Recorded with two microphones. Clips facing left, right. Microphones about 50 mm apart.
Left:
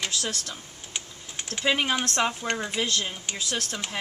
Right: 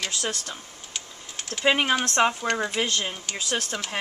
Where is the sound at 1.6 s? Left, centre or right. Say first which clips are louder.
Right 3 dB; centre.